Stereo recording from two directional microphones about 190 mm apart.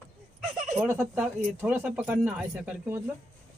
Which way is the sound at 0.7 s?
10° right (ahead or behind).